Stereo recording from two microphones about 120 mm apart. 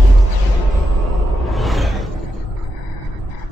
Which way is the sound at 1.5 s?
Centre (ahead or behind).